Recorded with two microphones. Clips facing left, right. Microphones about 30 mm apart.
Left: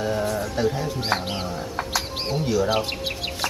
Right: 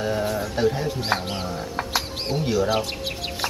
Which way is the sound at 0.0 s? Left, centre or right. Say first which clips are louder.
Even; centre.